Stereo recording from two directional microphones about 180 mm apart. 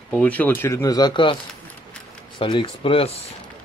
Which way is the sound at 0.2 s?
10° left (ahead or behind).